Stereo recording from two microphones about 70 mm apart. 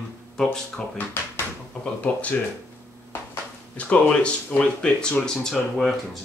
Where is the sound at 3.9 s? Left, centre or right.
Centre.